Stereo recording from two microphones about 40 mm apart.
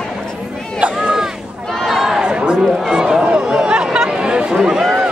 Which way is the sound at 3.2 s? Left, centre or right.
Right.